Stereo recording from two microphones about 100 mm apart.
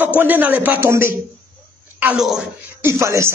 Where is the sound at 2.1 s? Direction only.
5° right (ahead or behind).